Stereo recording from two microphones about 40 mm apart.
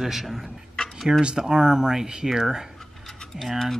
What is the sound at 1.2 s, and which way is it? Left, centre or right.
Speech, centre.